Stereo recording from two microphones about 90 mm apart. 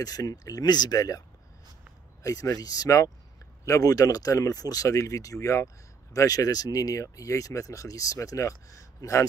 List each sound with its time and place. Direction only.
0.0 s speech: 45° left (ahead or behind)
2.2 s speech: 35° left (ahead or behind)